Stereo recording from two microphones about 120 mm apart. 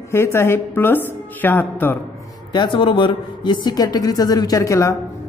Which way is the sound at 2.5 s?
40° left (ahead or behind).